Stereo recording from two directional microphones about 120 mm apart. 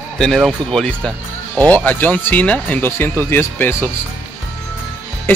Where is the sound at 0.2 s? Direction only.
Centre (ahead or behind); by 3.9 s 20° left (ahead or behind).